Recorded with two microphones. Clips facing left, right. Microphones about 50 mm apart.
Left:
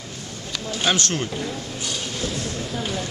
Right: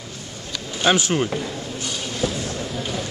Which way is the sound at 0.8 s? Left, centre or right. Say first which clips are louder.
Right 5 dB; centre.